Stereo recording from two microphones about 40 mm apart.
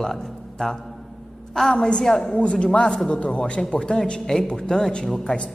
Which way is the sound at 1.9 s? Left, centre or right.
Centre.